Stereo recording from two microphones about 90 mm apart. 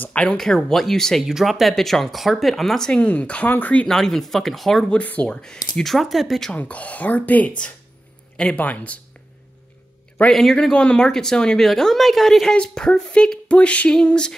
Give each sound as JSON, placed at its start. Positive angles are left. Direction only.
{"t": 0.0, "sound": "speech", "side_deg": 15}
{"t": 3.9, "sound": "speech", "side_deg": 5}
{"t": 5.0, "sound": "speech", "side_deg": 15}
{"t": 6.5, "sound": "speech", "side_deg": 15}
{"t": 10.3, "sound": "speech", "side_deg": 5}